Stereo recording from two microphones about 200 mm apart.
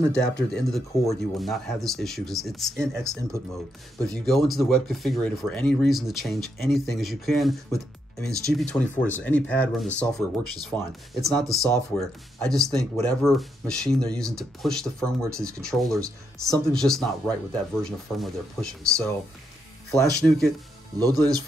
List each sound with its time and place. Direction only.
0.0 s speech: 5° left (ahead or behind)
20.2 s speech: centre (ahead or behind)
21.0 s speech: 20° right (ahead or behind)